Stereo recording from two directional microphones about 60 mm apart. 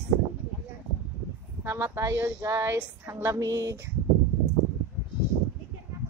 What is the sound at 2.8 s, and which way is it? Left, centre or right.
Speech, right.